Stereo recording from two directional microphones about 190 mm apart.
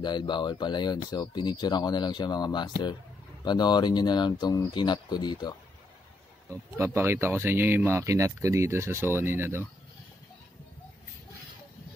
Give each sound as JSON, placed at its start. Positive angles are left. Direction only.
{"t": 0.0, "sound": "speech", "side_deg": 25}
{"t": 6.8, "sound": "speech", "side_deg": -15}